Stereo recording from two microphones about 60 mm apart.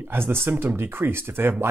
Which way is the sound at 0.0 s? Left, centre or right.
Right.